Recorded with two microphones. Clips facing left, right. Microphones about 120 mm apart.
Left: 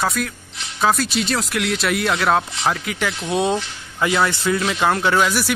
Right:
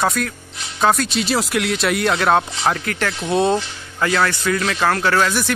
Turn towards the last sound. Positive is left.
turn(degrees=10)  # may be behind; listen again after turning